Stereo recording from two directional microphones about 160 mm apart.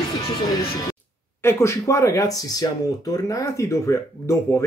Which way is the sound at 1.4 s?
15° left (ahead or behind).